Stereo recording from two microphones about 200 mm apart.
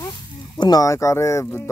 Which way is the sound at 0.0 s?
20° left (ahead or behind).